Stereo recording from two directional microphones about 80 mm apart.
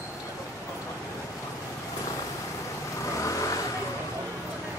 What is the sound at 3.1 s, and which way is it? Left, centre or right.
Vehicle, left.